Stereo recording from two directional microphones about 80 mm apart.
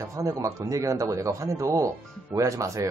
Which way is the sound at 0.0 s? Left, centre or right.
Right.